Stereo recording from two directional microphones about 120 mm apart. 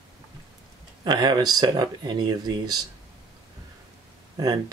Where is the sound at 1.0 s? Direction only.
35° right (ahead or behind).